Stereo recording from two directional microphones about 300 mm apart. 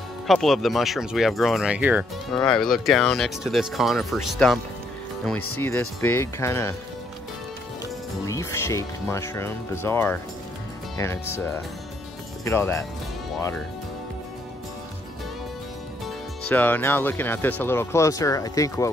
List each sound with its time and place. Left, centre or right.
0.3 s speech: centre
5.6 s speech: centre
8.3 s speech: centre
16.4 s speech: centre